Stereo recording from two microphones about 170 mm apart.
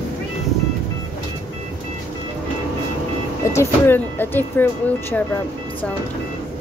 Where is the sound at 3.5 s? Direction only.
15° left (ahead or behind).